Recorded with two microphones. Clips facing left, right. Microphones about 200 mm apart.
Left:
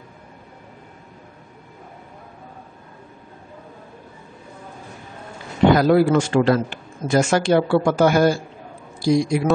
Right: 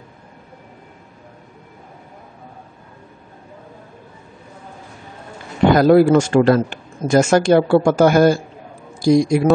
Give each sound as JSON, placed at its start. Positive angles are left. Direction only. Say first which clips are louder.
{"t": 5.8, "sound": "a man's voice", "louder": "right 4 dB", "side_deg": -45}